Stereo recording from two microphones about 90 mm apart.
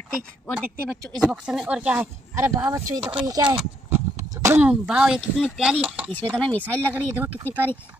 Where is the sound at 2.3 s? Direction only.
30° right (ahead or behind).